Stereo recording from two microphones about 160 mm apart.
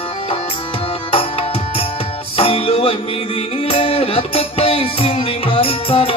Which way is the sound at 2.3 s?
35° left (ahead or behind).